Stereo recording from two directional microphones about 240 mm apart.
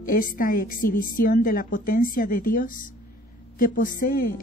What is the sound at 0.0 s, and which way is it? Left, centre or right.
A woman's voice, left.